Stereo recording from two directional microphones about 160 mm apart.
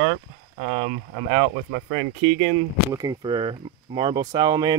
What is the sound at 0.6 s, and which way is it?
Speech, 80° right.